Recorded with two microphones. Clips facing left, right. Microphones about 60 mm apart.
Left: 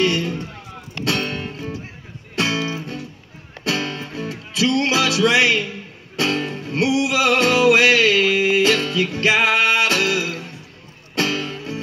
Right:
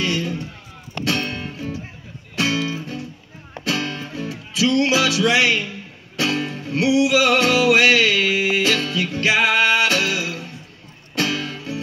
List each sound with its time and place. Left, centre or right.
0.0 s a sound: left
1.1 s music: left
3.8 s music: left